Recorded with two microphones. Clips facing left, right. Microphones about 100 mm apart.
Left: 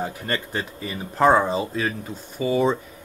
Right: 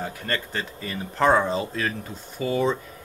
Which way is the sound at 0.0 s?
15° left (ahead or behind).